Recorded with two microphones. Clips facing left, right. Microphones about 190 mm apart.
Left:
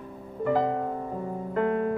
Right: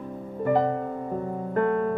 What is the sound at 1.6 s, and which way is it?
Music, 50° right (ahead or behind).